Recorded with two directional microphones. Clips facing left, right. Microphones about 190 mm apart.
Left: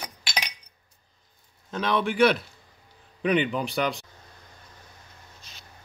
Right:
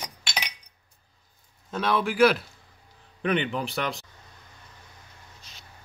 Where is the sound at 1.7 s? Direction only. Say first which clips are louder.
Even; 5° right (ahead or behind).